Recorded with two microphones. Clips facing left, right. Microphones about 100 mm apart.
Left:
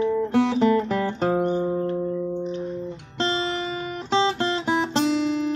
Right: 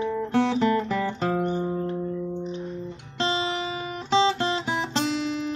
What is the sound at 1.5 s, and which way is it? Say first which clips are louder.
Music: left 3 dB; 10° left (ahead or behind).